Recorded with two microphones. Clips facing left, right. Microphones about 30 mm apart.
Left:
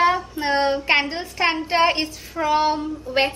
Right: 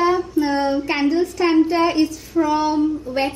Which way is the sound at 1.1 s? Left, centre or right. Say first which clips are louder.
Right 5 dB; left.